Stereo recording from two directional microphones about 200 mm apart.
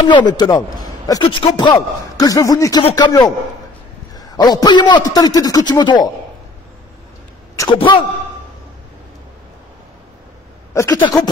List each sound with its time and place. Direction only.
0.0 s a man's voice: 20° left (ahead or behind)
2.8 s a man's voice: 30° left (ahead or behind)
3.1 s a man's voice: 15° left (ahead or behind)
7.5 s a man's voice: 20° left (ahead or behind)
10.7 s speech: 15° left (ahead or behind)